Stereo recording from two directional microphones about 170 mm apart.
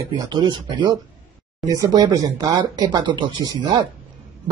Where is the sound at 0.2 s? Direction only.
25° right (ahead or behind).